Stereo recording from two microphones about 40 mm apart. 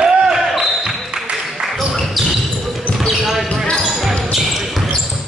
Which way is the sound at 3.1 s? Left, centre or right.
Centre.